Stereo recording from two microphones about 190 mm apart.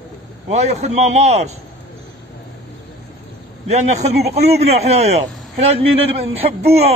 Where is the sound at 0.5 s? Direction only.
35° right (ahead or behind).